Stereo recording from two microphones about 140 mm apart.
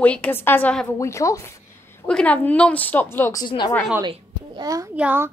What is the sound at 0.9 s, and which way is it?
Speech, 20° left (ahead or behind).